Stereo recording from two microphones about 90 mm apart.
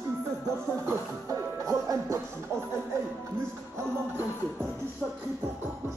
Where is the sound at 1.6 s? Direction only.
35° right (ahead or behind).